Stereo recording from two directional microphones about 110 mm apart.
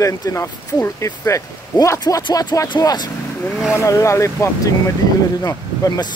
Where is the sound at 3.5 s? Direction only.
Centre (ahead or behind).